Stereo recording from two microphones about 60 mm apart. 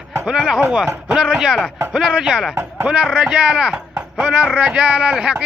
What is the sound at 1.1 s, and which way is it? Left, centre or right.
A man's voice, centre.